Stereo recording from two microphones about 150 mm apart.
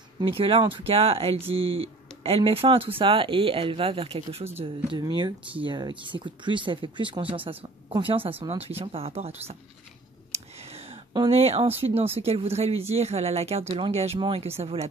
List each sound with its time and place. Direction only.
0.2 s speech: 35° right (ahead or behind)
4.9 s speech: 30° right (ahead or behind)
10.3 s clicking: 45° right (ahead or behind)
11.2 s speech: 40° right (ahead or behind)